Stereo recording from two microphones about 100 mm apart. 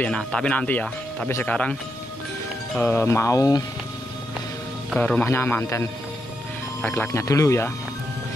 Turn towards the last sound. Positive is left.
turn(degrees=30)  # may be behind; listen again after turning